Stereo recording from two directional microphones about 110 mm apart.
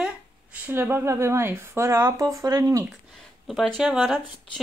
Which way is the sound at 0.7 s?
20° right (ahead or behind).